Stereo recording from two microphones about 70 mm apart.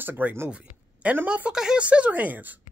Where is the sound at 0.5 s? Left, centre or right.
Centre.